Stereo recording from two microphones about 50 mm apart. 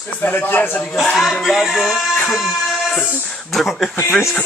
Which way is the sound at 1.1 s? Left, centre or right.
Centre.